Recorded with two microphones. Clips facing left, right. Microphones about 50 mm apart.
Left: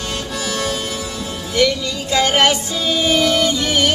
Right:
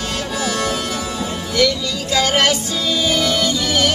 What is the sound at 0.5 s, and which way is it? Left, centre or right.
Music, centre.